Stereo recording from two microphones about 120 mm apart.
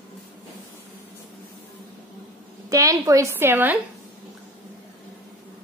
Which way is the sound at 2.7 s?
25° right (ahead or behind).